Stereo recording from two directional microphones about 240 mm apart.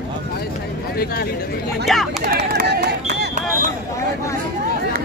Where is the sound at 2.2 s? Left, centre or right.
Right.